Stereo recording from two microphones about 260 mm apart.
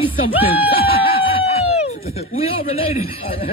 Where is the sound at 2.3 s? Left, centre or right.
Left.